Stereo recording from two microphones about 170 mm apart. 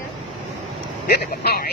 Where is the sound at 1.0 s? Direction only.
60° left (ahead or behind).